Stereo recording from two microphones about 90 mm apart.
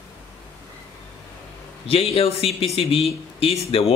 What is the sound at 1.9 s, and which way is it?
Speech, 90° left.